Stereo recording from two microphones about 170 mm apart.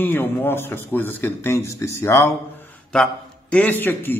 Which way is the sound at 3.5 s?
10° left (ahead or behind).